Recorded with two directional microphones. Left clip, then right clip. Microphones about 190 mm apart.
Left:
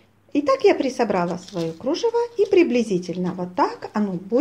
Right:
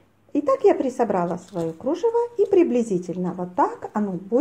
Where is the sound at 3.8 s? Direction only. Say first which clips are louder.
Left 1 dB; 10° left (ahead or behind).